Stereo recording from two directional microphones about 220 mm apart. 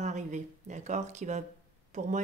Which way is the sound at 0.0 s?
35° right (ahead or behind).